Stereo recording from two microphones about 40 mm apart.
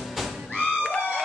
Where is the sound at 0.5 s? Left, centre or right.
Left.